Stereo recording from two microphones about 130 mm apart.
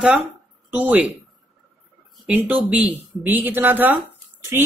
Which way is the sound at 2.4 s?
15° right (ahead or behind).